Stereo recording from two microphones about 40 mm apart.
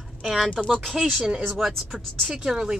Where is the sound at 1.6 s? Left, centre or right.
Centre.